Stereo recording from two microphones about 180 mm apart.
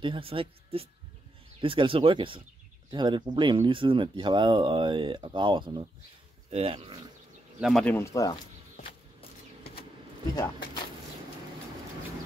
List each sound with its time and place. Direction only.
0.0 s speech: 30° right (ahead or behind)
7.6 s speech: centre (ahead or behind)
7.9 s speech: 15° left (ahead or behind)
10.3 s speech: 20° left (ahead or behind)